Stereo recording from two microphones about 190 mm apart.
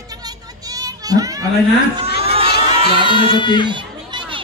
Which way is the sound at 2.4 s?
60° left (ahead or behind).